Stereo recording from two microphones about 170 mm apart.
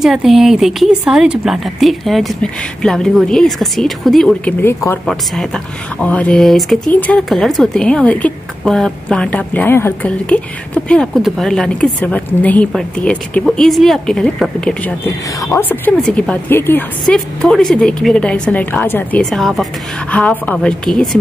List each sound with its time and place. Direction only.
0.0 s speech: centre (ahead or behind)
19.3 s speech: centre (ahead or behind)